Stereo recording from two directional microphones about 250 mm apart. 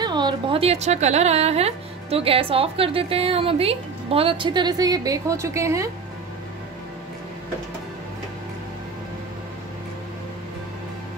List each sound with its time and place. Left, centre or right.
0.0 s a woman's voice: centre